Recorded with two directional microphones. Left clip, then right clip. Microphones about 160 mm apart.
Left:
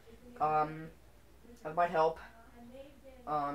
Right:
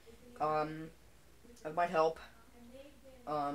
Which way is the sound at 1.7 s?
20° right (ahead or behind).